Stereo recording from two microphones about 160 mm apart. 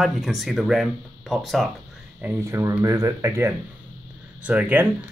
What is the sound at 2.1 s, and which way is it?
Speech, 15° right (ahead or behind).